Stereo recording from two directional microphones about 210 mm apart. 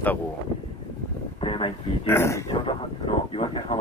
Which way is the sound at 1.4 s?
25° left (ahead or behind).